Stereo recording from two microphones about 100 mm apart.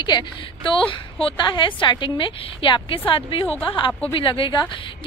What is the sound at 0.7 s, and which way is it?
A woman's voice, 55° left (ahead or behind).